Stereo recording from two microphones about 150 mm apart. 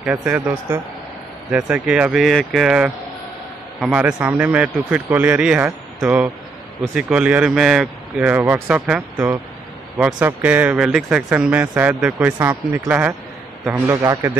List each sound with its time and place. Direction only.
0.0 s speech: 5° right (ahead or behind)
10.2 s a man's voice: 10° right (ahead or behind)